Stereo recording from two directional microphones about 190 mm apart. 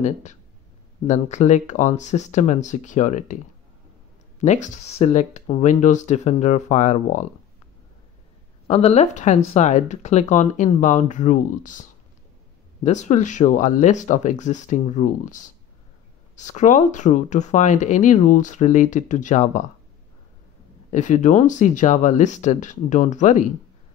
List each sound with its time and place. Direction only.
0.0 s speech: 40° left (ahead or behind)
4.4 s speech: 35° left (ahead or behind)
8.6 s speech: 35° left (ahead or behind)
12.8 s speech: 40° left (ahead or behind)
20.9 s speech: 40° left (ahead or behind)